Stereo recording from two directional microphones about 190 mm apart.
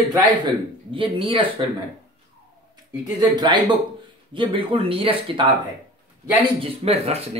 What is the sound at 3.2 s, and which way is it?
Speech, 20° right (ahead or behind).